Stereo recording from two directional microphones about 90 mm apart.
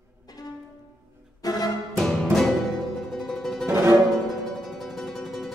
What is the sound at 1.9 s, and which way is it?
Music, 5° left (ahead or behind).